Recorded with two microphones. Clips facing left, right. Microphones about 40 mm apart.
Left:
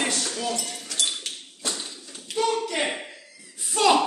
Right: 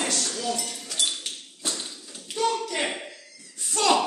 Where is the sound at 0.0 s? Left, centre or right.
Centre.